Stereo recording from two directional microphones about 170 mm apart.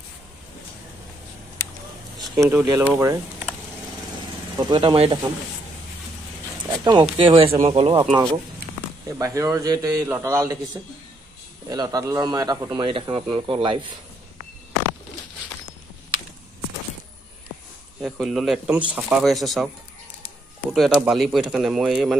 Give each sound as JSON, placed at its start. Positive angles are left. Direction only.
{"t": 2.4, "sound": "speech", "side_deg": -20}
{"t": 4.6, "sound": "speech", "side_deg": -25}
{"t": 6.7, "sound": "speech", "side_deg": -25}
{"t": 8.0, "sound": "speech", "side_deg": -15}
{"t": 18.0, "sound": "speech", "side_deg": 0}
{"t": 20.7, "sound": "speech", "side_deg": 0}